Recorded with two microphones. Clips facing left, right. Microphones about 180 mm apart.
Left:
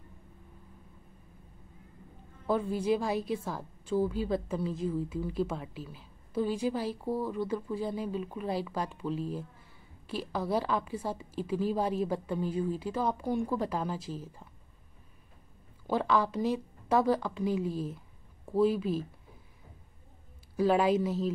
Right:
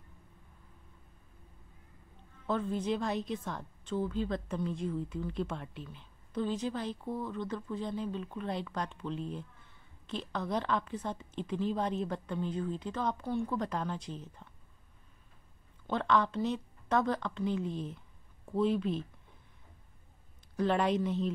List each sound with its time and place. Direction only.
2.4 s a woman's voice: 10° left (ahead or behind)
15.9 s a woman's voice: 10° left (ahead or behind)
20.5 s a woman's voice: 5° left (ahead or behind)